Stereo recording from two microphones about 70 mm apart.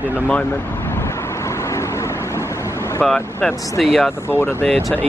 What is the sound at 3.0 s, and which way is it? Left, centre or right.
Speech, centre.